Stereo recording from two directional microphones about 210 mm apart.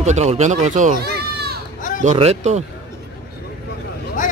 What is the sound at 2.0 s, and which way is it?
Speech, 30° right (ahead or behind).